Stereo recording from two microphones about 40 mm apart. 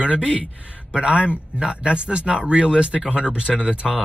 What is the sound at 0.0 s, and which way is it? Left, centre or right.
Speech, right.